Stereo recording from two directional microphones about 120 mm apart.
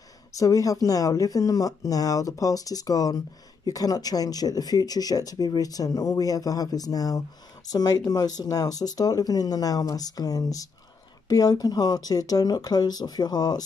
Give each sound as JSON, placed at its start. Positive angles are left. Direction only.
{"t": 0.4, "sound": "speech", "side_deg": 30}